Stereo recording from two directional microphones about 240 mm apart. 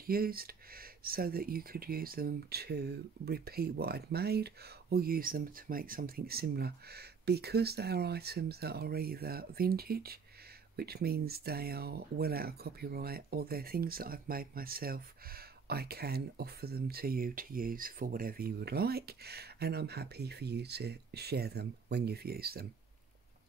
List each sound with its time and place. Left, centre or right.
0.0 s speech: right